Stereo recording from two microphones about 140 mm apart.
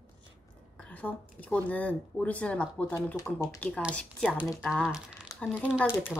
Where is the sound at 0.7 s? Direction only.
10° left (ahead or behind); by 5.8 s 10° right (ahead or behind).